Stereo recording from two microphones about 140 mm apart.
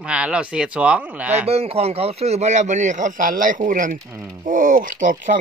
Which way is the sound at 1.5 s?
45° right (ahead or behind).